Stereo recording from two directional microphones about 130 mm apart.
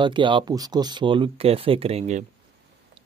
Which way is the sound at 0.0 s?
40° right (ahead or behind).